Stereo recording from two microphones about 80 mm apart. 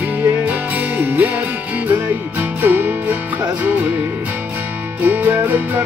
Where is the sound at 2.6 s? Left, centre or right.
Right.